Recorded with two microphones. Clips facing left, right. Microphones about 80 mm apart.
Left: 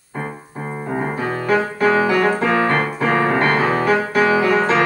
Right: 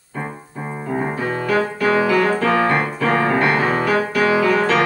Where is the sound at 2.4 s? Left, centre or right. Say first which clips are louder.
Even; centre.